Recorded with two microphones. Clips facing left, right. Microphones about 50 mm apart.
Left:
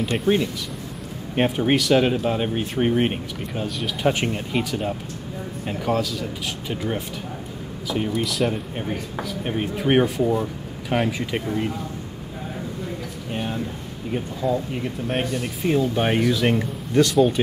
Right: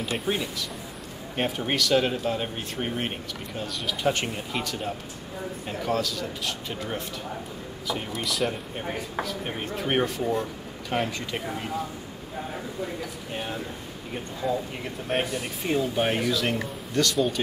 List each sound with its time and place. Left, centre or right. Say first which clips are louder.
0.0 s speech: left 6 dB; centre
1.3 s speech: left 7 dB; centre
3.8 s speech: left 4 dB; centre
8.0 s speech: left 7 dB; centre
13.3 s a sound: left 6 dB; centre
14.1 s speech: left 5 dB; centre